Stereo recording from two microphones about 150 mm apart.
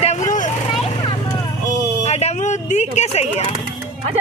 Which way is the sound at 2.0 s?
45° left (ahead or behind).